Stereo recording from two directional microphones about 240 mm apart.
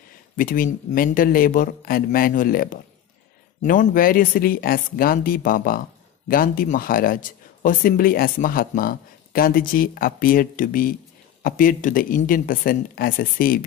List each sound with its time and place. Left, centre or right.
0.4 s speech: left